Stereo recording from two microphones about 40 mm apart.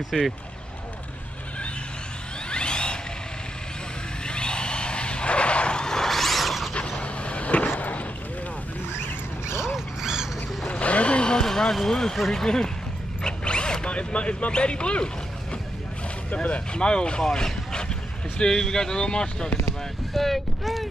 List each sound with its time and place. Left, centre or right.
0.1 s speech: centre
2.5 s a sound: left
4.3 s vehicle: left; by 6.7 s centre
6.7 s vehicle: left
9.6 s dog: centre
10.7 s a sound: left; by 12.2 s centre
12.3 s speech: centre
16.7 s speech: left
17.2 s speech: centre
20.2 s speech: centre